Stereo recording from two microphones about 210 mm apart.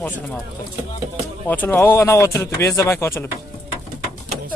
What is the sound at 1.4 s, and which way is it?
Speech, 10° left (ahead or behind).